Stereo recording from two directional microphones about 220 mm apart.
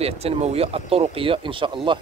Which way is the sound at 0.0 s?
30° right (ahead or behind).